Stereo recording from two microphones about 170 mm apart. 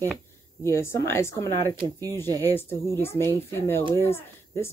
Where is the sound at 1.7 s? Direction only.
25° right (ahead or behind).